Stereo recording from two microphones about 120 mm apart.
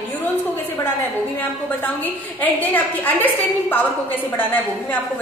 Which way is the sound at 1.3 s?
15° left (ahead or behind).